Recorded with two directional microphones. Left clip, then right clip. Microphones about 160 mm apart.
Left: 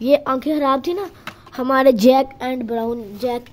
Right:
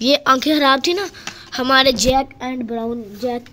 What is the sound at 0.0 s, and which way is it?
A woman's voice, 10° left (ahead or behind).